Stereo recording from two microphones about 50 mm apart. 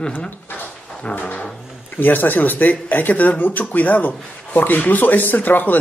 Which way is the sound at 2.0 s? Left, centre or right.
Left.